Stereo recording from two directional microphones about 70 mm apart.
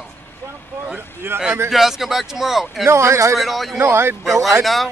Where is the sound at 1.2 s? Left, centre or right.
Right.